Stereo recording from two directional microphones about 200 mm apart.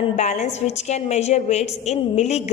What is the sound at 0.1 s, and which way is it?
A woman's voice, 35° left (ahead or behind).